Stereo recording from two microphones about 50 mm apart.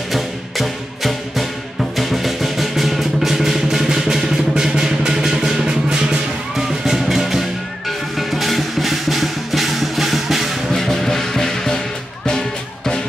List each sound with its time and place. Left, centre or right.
0.1 s music: centre
6.5 s music: centre
10.8 s music: centre